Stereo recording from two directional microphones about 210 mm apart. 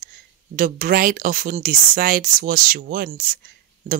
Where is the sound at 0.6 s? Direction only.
40° right (ahead or behind).